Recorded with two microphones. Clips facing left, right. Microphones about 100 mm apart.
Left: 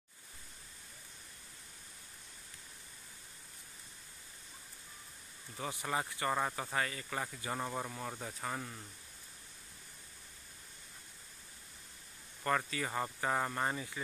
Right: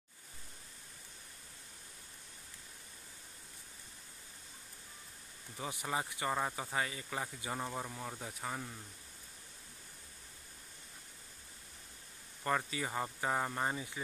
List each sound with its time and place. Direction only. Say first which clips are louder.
5.6 s speech: left 1 dB; 15° right (ahead or behind)
6.3 s speech: left 1 dB; 5° right (ahead or behind)
12.4 s speech: left 1 dB; 15° right (ahead or behind)